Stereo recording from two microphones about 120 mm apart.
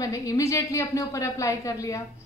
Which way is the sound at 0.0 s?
30° left (ahead or behind).